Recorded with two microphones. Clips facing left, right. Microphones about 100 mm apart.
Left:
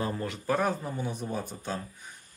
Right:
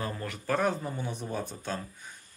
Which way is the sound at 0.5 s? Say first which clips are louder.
Even; 5° left (ahead or behind).